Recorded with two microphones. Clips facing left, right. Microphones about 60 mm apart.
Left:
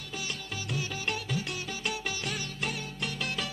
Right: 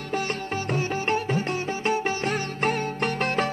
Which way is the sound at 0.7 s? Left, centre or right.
Right.